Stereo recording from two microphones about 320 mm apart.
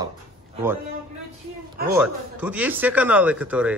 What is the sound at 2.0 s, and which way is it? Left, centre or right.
Speech, centre.